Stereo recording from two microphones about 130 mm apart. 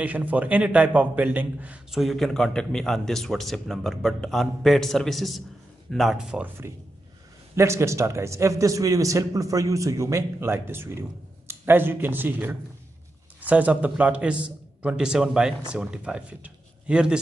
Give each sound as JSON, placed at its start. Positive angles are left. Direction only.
{"t": 0.0, "sound": "a man's voice", "side_deg": -10}
{"t": 7.5, "sound": "a man's voice", "side_deg": -20}